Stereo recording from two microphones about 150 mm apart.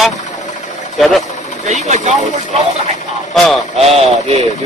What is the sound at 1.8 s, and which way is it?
Speech, 50° right (ahead or behind).